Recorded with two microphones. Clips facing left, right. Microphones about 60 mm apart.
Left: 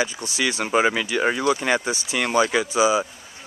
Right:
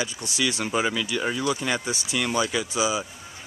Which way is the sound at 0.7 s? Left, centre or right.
Left.